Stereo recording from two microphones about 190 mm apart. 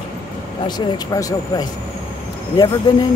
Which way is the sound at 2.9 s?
20° left (ahead or behind).